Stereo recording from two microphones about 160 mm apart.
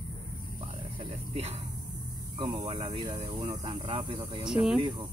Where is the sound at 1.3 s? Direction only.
40° right (ahead or behind).